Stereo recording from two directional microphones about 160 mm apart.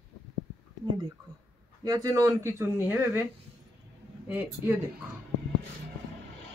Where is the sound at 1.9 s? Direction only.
25° right (ahead or behind).